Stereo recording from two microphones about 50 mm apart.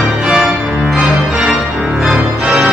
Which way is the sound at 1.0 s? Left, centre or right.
Centre.